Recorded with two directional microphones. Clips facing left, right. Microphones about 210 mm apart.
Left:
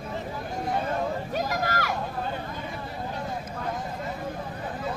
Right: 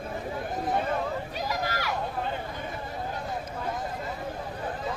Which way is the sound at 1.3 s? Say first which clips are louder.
Left 3 dB; 50° left (ahead or behind).